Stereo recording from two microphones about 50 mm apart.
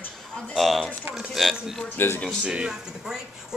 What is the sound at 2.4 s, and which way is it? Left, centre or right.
Speech, centre.